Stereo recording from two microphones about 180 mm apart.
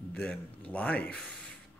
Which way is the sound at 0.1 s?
5° left (ahead or behind).